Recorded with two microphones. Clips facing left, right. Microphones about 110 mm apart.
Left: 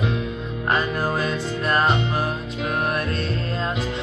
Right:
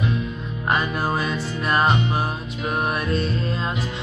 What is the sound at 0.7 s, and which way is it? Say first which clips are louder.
Music: even; 15° right (ahead or behind).